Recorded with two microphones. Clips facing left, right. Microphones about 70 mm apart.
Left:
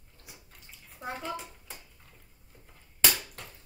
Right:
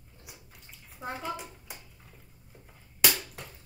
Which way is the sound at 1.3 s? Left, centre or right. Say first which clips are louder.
Even; centre.